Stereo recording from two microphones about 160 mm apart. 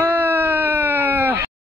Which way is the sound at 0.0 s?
10° right (ahead or behind).